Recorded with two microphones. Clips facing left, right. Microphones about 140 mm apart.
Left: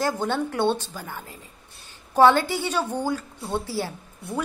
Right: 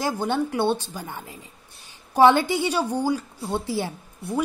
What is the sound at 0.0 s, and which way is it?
A woman's voice, 10° right (ahead or behind).